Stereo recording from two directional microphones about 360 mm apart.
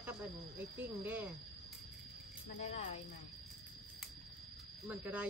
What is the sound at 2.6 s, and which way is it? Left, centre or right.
Speech, centre.